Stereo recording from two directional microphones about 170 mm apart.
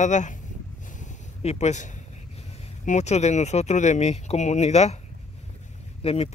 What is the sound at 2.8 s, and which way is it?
Speech, 45° left (ahead or behind).